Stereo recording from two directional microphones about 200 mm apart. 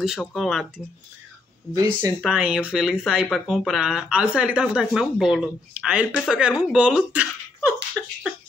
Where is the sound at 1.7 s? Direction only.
15° right (ahead or behind).